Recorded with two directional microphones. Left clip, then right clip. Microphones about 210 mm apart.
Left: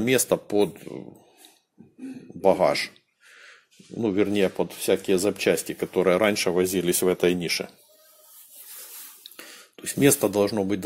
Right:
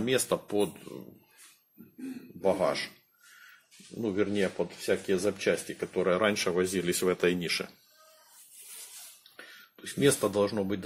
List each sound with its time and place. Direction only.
0.0 s speech: 30° left (ahead or behind)
2.4 s speech: 35° left (ahead or behind)
4.0 s speech: 35° left (ahead or behind); by 7.7 s 15° left (ahead or behind)
9.8 s speech: 35° left (ahead or behind)